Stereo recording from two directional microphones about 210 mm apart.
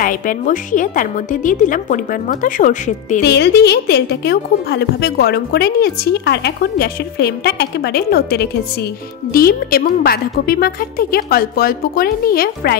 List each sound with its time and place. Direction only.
0.0 s a woman's voice: 40° left (ahead or behind)
3.2 s speech: 50° left (ahead or behind)